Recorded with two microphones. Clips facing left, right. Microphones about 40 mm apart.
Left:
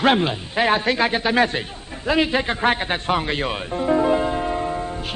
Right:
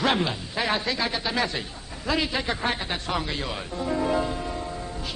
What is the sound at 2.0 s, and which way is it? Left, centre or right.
A man's voice, left.